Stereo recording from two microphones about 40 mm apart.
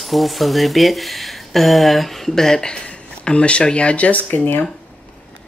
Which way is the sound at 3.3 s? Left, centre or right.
Left.